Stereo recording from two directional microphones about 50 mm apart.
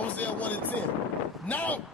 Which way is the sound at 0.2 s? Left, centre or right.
Left.